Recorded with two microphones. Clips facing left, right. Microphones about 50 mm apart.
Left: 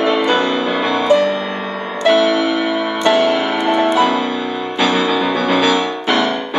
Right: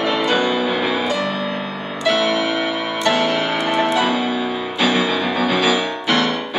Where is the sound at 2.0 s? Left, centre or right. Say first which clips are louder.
Left 5 dB; centre.